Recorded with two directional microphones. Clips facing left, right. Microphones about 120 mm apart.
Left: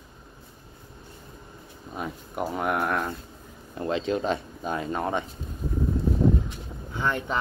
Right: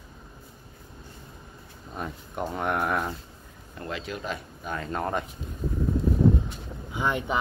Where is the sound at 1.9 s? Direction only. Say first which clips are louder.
Left 1 dB; 5° left (ahead or behind).